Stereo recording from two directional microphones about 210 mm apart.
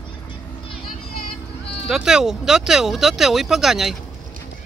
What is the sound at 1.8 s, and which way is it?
Speech, 5° right (ahead or behind).